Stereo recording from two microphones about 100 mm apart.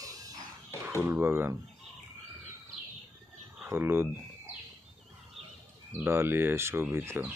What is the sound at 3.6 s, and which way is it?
Speech, 25° right (ahead or behind).